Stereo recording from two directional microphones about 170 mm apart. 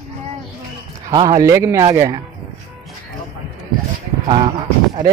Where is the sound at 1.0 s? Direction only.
25° right (ahead or behind).